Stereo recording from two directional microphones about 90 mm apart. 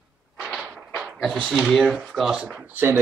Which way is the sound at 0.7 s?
15° right (ahead or behind).